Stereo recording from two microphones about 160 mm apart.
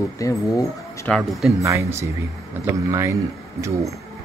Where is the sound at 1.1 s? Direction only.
Centre (ahead or behind).